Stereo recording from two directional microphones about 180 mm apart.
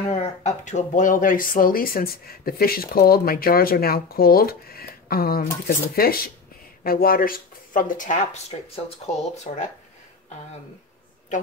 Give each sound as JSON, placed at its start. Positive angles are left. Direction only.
{"t": 0.1, "sound": "speech", "side_deg": 40}